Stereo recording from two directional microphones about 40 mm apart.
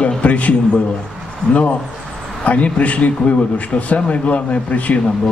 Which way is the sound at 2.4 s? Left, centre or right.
Left.